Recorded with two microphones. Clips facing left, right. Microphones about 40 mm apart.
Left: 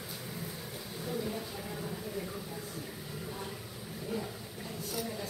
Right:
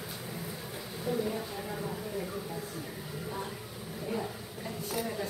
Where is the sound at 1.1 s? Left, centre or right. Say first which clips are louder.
Right 5 dB; centre.